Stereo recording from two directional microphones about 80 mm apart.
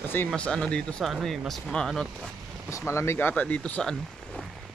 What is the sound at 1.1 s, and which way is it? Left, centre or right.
Speech, centre.